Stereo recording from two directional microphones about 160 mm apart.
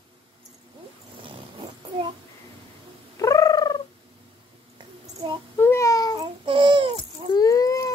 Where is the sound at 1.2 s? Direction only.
30° right (ahead or behind).